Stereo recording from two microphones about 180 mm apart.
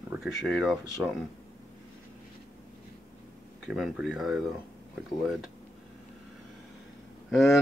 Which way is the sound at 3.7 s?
5° right (ahead or behind).